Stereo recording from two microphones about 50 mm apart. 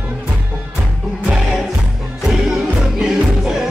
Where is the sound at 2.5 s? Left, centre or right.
Centre.